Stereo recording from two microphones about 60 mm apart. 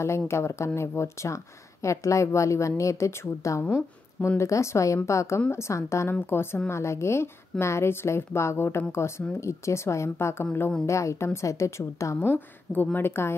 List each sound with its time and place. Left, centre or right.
0.3 s a woman's voice: left
6.3 s a woman's voice: left
10.9 s speech: left
12.7 s speech: left
13.0 s a woman's voice: left